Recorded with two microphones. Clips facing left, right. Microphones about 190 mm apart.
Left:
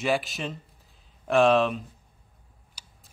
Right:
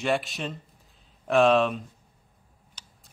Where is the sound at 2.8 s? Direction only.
10° left (ahead or behind).